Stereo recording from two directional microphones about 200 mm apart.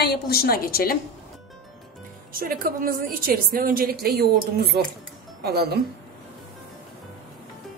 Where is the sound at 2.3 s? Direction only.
45° right (ahead or behind).